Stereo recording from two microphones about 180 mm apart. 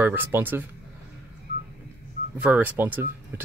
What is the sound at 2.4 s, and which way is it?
Speech, 10° right (ahead or behind).